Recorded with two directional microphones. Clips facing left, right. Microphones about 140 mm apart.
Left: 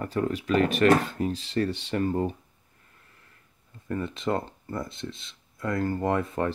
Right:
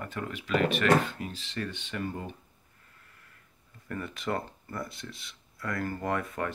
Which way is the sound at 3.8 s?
25° left (ahead or behind).